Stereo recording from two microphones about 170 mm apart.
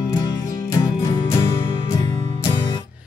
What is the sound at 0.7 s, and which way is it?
Music, 20° left (ahead or behind).